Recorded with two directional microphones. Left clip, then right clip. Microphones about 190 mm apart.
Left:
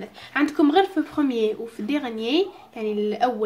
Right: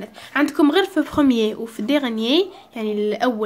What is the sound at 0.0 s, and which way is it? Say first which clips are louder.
Speech: right 3 dB; 25° right (ahead or behind).